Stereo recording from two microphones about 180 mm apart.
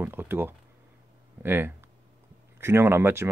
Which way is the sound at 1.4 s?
10° right (ahead or behind).